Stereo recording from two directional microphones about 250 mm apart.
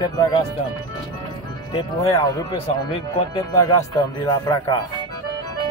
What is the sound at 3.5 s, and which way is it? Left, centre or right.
Speech, centre.